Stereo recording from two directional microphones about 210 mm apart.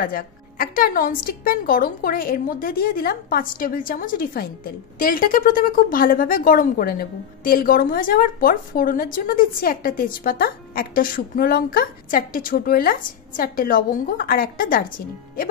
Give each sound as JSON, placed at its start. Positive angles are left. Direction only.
{"t": 0.0, "sound": "a woman's voice", "side_deg": 40}